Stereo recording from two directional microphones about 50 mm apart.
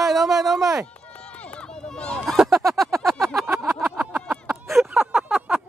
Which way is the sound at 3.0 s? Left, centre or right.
Centre.